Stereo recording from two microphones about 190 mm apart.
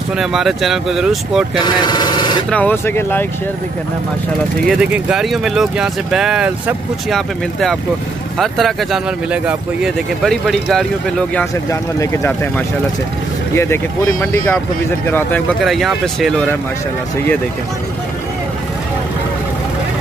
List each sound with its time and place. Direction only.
0.2 s speech: centre (ahead or behind)
1.6 s speech: 20° left (ahead or behind)
2.5 s speech: 10° left (ahead or behind)
4.6 s speech: 5° right (ahead or behind)
11.7 s speech: 15° left (ahead or behind)
15.6 s speech: centre (ahead or behind)